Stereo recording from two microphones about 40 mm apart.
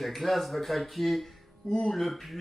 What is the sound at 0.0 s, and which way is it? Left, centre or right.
Speech, centre.